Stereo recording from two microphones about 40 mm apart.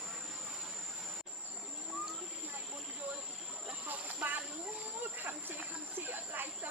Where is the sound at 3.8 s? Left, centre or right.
Right.